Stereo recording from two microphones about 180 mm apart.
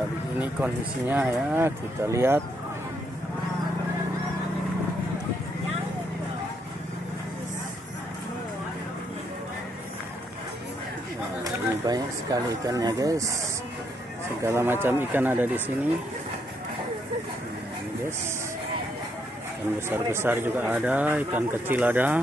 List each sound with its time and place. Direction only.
0.4 s speech: 10° right (ahead or behind)
11.4 s a sound: 20° right (ahead or behind)
14.4 s speech: 15° right (ahead or behind)
19.9 s speech: 15° right (ahead or behind)